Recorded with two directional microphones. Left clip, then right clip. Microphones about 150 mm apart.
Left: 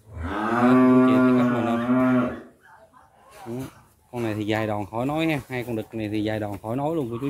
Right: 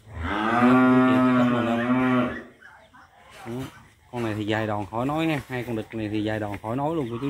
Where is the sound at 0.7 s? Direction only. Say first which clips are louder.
Left 1 dB; 35° right (ahead or behind).